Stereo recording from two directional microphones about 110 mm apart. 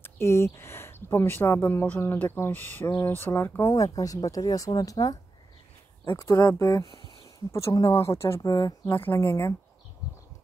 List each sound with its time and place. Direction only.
0.0 s speech: 25° left (ahead or behind)
3.7 s speech: 35° left (ahead or behind)
6.9 s a sound: 45° right (ahead or behind)
7.2 s speech: 30° left (ahead or behind)